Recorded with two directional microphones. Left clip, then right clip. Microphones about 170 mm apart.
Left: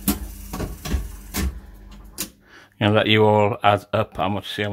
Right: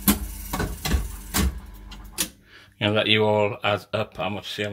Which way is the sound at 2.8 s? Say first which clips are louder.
Left 3 dB; 35° left (ahead or behind).